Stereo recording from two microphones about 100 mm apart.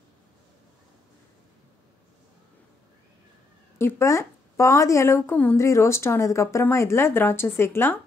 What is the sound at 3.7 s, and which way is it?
Speech, 25° left (ahead or behind).